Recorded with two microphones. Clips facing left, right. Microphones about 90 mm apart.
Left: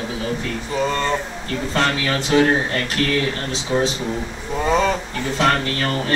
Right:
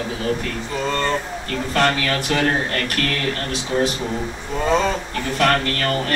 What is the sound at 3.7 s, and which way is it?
Speech, 20° left (ahead or behind).